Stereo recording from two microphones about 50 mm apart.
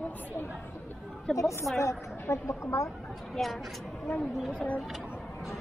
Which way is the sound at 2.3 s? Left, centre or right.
Left.